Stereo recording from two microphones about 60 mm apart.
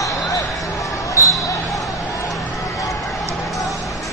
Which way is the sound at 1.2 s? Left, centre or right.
Left.